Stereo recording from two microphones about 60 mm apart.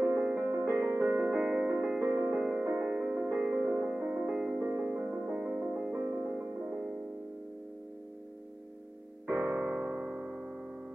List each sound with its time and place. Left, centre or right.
0.1 s music: centre
0.4 s music: right
2.0 s music: right
2.4 s music: right
2.9 s music: centre
3.2 s music: right
3.5 s music: right
4.6 s music: right
5.0 s music: right
5.9 s music: right
6.2 s music: centre
9.3 s keyboard: right
9.8 s music: centre